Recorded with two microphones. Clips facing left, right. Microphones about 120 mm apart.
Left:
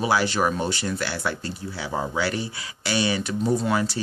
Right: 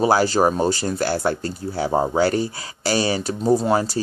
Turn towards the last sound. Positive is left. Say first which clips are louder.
# right 5 dB
turn(degrees=-40)  # may be behind; listen again after turning